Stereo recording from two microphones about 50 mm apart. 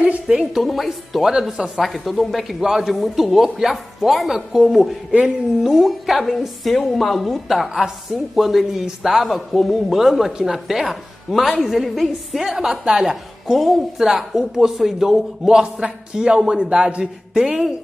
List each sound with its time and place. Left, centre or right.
0.4 s a woman's voice: centre
13.1 s a woman's voice: centre